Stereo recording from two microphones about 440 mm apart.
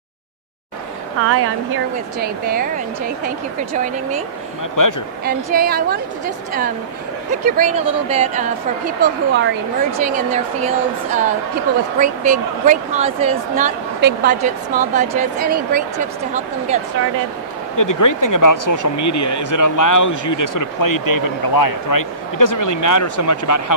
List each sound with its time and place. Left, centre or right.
1.2 s a woman's voice: right
4.8 s speech: left
5.2 s a woman's voice: centre
12.0 s speech: centre
17.7 s speech: left